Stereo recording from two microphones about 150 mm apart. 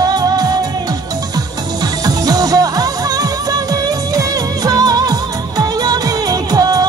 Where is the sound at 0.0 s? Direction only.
25° right (ahead or behind).